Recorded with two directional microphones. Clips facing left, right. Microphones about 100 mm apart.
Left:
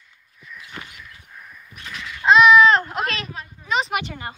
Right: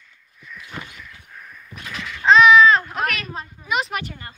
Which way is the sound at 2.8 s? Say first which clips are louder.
Right 1 dB; 25° left (ahead or behind).